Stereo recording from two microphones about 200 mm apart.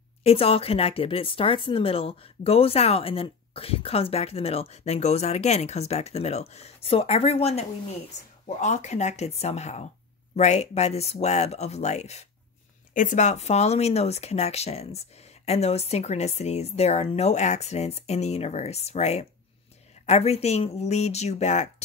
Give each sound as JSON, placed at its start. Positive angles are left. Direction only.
{"t": 0.2, "sound": "speech", "side_deg": 30}